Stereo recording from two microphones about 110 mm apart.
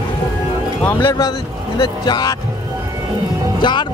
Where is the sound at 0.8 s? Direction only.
15° left (ahead or behind).